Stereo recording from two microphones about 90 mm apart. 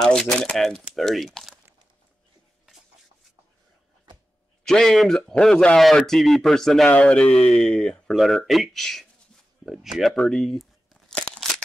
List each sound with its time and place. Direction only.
0.0 s speech: 10° left (ahead or behind)
4.6 s speech: 5° left (ahead or behind)
6.9 s speech: 15° left (ahead or behind); by 10.1 s 5° right (ahead or behind)
10.1 s crumpling: 5° left (ahead or behind)